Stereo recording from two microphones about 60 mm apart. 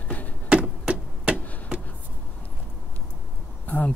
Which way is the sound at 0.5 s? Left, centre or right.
Centre.